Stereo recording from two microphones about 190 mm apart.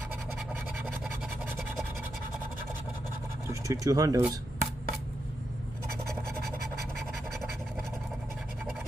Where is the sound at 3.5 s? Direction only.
15° right (ahead or behind).